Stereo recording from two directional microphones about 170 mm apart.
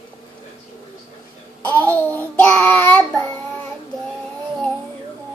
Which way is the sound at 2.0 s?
10° left (ahead or behind).